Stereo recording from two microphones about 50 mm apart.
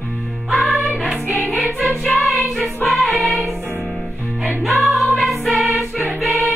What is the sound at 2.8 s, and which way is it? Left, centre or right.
Music, centre.